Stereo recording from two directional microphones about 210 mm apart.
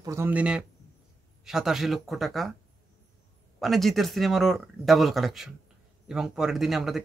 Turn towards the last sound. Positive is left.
turn(degrees=0)  # may be behind; listen again after turning